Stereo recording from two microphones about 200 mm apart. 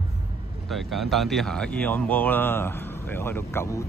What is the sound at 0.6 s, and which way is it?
Speech, centre (ahead or behind).